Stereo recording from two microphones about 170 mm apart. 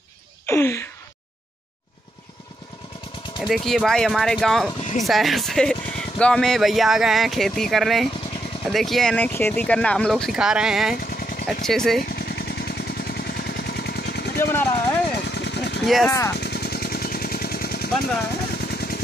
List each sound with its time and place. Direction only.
0.5 s a sound: 15° left (ahead or behind)
3.3 s speech: centre (ahead or behind)
11.0 s vehicle: 60° left (ahead or behind)
11.4 s speech: 5° left (ahead or behind)
12.1 s vehicle: 70° left (ahead or behind)
14.4 s a sound: 10° left (ahead or behind)
15.2 s vehicle: 85° left
15.8 s speech: centre (ahead or behind)
16.1 s speech: 20° left (ahead or behind)
16.3 s vehicle: 70° left (ahead or behind)